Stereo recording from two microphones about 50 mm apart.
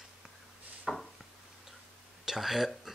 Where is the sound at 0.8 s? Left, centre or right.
Centre.